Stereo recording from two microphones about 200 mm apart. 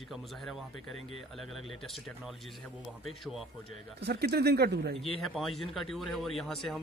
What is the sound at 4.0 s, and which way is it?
Speech, 55° right (ahead or behind).